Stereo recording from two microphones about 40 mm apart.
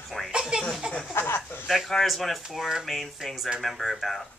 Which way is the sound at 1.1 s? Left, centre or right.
Left.